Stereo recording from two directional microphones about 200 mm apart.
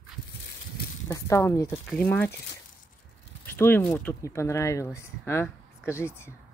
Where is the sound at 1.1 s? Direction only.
15° left (ahead or behind).